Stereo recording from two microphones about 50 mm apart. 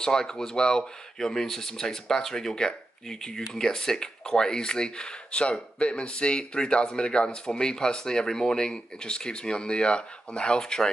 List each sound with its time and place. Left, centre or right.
0.0 s speech: centre